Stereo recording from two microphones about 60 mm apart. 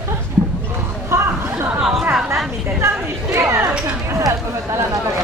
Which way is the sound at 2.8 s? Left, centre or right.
Right.